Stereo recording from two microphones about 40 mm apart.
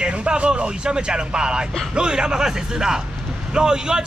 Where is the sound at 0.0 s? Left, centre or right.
Right.